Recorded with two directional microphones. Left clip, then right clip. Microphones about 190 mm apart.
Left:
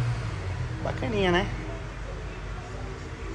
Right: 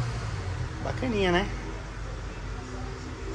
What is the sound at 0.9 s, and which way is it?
Speech, 20° right (ahead or behind).